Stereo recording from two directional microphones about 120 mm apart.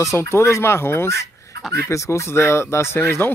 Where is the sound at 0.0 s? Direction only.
25° left (ahead or behind).